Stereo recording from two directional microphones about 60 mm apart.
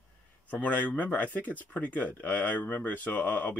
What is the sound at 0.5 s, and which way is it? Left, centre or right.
Speech, left.